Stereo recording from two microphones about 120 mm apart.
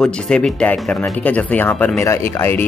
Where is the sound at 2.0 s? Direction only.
20° left (ahead or behind).